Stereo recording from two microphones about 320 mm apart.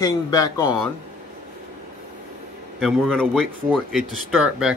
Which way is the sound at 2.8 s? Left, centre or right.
Centre.